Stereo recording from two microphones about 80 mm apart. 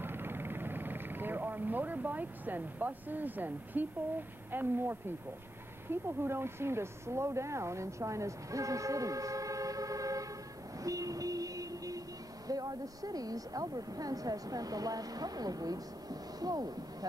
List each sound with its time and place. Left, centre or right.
0.0 s a sound: right
4.5 s speech: right
10.8 s vehicle: right
12.4 s a woman's voice: right